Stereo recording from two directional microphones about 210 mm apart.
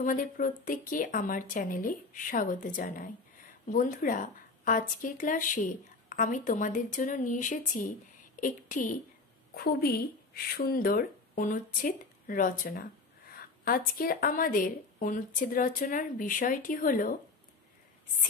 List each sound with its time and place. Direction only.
0.0 s a woman's voice: 40° left (ahead or behind)